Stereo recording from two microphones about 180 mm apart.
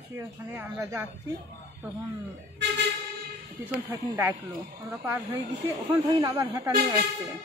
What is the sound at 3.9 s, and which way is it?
A woman's voice, 10° right (ahead or behind).